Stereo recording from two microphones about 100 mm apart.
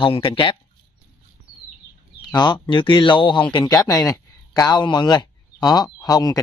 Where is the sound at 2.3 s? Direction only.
50° left (ahead or behind).